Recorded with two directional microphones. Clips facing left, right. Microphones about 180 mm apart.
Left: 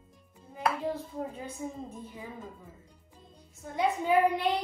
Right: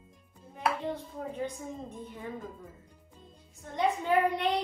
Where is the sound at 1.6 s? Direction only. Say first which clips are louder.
Left 3 dB; 15° left (ahead or behind).